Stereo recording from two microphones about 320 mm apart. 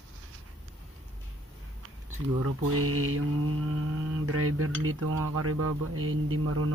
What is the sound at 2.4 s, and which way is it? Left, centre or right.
Cutlery, right.